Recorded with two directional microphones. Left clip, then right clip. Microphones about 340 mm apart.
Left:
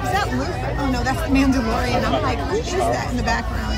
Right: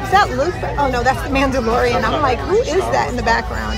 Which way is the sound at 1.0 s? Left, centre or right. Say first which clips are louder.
Right 2 dB; centre.